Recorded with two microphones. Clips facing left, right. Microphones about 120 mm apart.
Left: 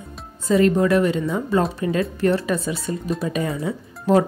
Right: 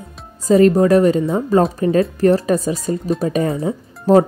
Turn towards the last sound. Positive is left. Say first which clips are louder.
# right 5 dB
turn(degrees=-40)  # may be behind; listen again after turning